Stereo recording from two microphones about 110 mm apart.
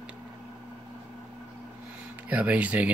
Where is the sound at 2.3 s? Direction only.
15° right (ahead or behind).